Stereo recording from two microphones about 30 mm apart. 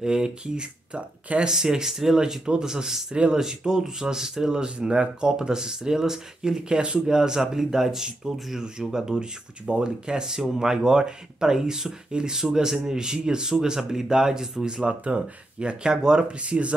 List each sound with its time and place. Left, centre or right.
0.0 s speech: right
4.6 s speech: right
5.3 s speech: right
6.8 s speech: right
7.2 s speech: centre
14.7 s speech: right
16.3 s speech: right